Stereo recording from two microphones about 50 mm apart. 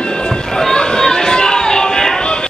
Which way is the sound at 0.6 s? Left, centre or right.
Centre.